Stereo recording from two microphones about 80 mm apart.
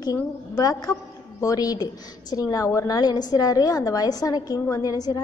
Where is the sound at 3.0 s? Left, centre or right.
Left.